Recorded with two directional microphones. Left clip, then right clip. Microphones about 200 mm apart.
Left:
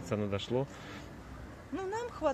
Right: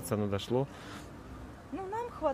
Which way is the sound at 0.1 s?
20° right (ahead or behind).